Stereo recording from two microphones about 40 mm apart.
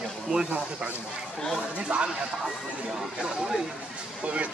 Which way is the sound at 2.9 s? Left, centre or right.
Centre.